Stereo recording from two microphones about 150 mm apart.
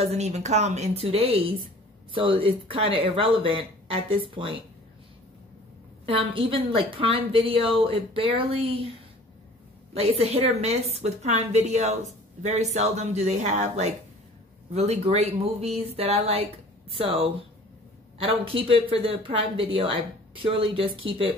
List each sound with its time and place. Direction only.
0.0 s a woman's voice: 45° right (ahead or behind)
6.0 s a woman's voice: 35° right (ahead or behind)
9.9 s a woman's voice: 45° right (ahead or behind)